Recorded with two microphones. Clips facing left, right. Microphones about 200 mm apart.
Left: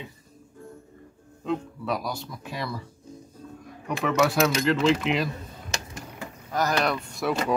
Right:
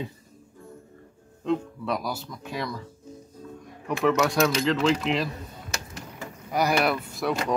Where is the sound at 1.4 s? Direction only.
Centre (ahead or behind).